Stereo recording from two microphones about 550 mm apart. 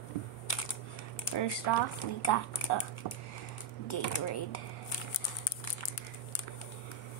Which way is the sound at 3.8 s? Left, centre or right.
Left.